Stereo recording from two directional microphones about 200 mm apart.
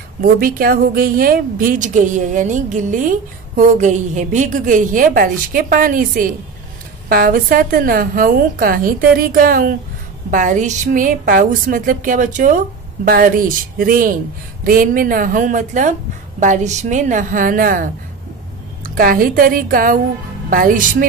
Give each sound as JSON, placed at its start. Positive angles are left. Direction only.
{"t": 0.2, "sound": "a woman's voice", "side_deg": -45}
{"t": 18.9, "sound": "a woman's voice", "side_deg": -45}